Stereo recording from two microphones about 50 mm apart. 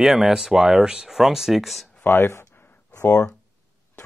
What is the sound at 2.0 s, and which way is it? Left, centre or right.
Speech, left.